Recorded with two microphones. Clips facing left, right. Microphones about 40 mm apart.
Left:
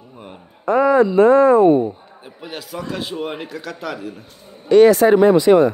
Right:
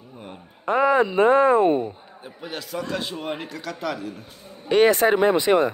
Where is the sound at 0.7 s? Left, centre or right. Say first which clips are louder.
Left 5 dB; right.